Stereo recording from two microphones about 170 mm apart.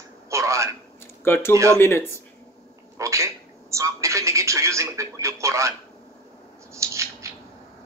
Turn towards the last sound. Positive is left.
turn(degrees=-15)  # may be behind; listen again after turning